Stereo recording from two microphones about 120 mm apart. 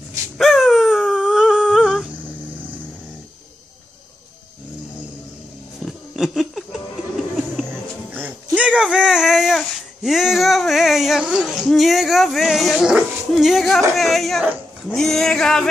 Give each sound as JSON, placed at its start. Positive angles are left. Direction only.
{"t": 0.4, "sound": "dog", "side_deg": -5}
{"t": 5.8, "sound": "a sound", "side_deg": -5}
{"t": 8.5, "sound": "speech", "side_deg": -10}